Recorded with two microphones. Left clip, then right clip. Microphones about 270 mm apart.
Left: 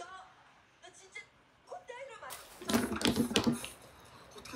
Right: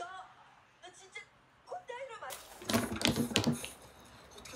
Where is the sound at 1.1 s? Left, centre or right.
Centre.